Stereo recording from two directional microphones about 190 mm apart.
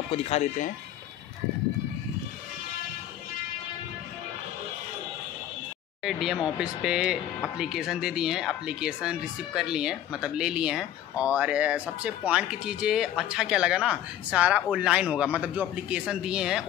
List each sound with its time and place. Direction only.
0.1 s speech: 35° left (ahead or behind)
6.0 s speech: centre (ahead or behind)